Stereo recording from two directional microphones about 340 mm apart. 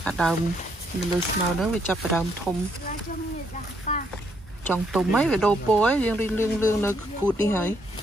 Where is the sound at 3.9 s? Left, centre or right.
Left.